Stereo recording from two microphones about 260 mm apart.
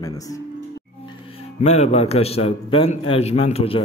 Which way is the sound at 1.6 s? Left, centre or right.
Left.